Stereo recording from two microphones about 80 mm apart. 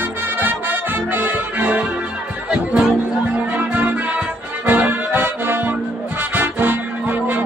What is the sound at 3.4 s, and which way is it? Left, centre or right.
Music, centre.